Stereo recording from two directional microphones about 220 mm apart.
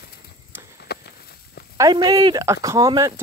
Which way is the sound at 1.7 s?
15° right (ahead or behind).